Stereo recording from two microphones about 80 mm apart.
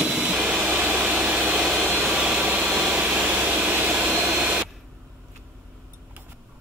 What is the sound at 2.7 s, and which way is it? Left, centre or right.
Jet engine, centre.